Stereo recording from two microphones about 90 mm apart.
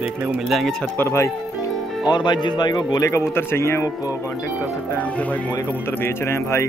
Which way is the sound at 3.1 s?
30° left (ahead or behind).